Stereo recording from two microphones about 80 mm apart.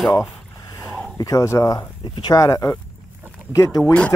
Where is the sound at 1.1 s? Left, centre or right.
Left.